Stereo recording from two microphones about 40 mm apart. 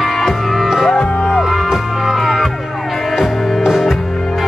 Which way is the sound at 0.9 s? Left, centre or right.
Left.